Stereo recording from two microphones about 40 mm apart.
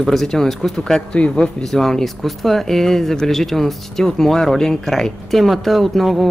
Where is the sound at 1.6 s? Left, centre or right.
Centre.